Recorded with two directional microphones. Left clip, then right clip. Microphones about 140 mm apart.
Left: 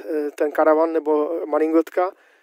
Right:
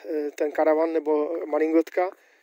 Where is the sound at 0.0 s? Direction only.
35° left (ahead or behind).